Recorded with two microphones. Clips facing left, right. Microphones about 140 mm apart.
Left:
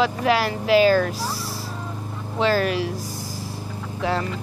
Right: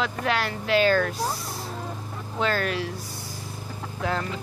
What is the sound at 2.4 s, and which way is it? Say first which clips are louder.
Speech: left 5 dB; 5° left (ahead or behind).